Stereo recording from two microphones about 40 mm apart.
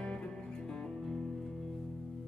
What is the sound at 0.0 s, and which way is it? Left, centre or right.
Music, left.